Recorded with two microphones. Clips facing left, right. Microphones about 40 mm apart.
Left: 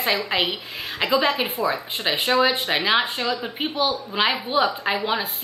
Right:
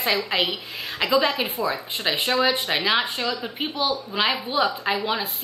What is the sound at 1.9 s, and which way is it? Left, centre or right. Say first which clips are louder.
A woman's voice: left 2 dB; centre.